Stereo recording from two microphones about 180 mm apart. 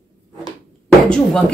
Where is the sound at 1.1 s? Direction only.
5° left (ahead or behind).